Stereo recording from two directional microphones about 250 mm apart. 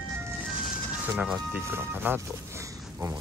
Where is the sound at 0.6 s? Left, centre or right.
Centre.